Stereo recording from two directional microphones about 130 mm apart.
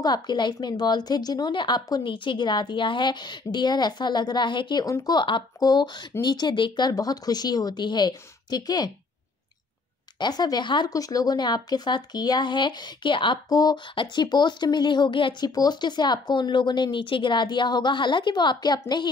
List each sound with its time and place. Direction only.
0.0 s a woman's voice: 35° left (ahead or behind)
10.1 s a woman's voice: 35° left (ahead or behind)